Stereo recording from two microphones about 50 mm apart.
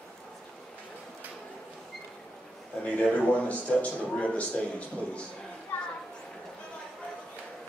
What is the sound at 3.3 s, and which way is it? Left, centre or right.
A man's voice, left.